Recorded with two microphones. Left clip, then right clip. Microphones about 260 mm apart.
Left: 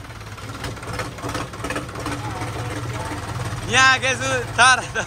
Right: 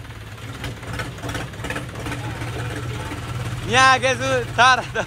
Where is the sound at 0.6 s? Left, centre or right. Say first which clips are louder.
Left 1 dB; left.